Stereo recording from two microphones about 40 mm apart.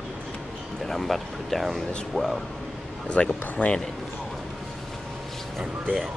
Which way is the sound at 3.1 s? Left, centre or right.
Left.